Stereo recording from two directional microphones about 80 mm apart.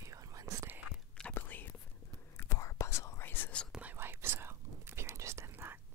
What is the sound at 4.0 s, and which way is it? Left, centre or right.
Whispering, right.